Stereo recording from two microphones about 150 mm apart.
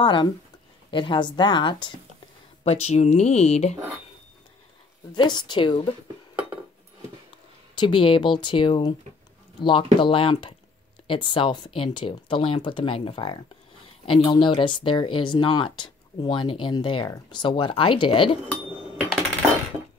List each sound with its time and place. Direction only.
0.0 s speech: 30° left (ahead or behind)
2.6 s speech: 45° left (ahead or behind)
5.1 s speech: 30° left (ahead or behind)
7.7 s speech: 35° left (ahead or behind)